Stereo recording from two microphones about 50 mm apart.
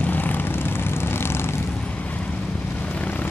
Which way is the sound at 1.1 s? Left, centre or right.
Left.